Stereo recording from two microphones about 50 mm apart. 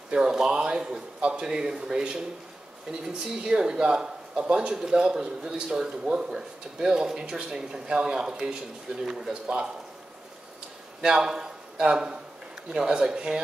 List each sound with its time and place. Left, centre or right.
0.1 s speech: centre
11.0 s a man's voice: centre